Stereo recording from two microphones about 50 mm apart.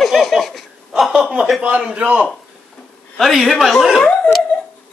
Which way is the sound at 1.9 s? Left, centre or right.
Right.